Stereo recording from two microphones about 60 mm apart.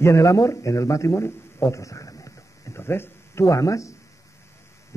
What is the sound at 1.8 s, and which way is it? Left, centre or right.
Speech, left.